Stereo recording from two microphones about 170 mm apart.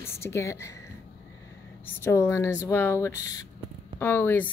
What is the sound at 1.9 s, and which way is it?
A woman's voice, 15° left (ahead or behind).